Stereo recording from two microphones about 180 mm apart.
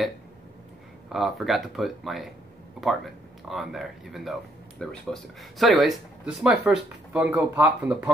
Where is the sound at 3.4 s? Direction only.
Centre (ahead or behind).